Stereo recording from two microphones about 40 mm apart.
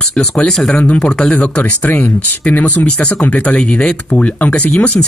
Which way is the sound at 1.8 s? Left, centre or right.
Left.